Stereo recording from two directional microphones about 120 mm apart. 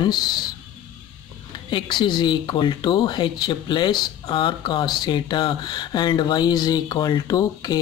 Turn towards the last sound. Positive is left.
turn(degrees=35)  # may be behind; listen again after turning